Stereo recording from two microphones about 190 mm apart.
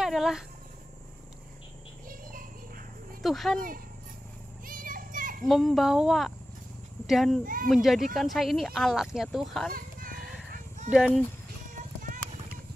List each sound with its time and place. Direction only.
0.0 s speech: centre (ahead or behind)
3.2 s speech: centre (ahead or behind)
4.6 s children playing: 45° right (ahead or behind)
5.5 s speech: centre (ahead or behind)
9.8 s children playing: 50° right (ahead or behind)
10.1 s music: centre (ahead or behind)
10.9 s speech: 5° right (ahead or behind)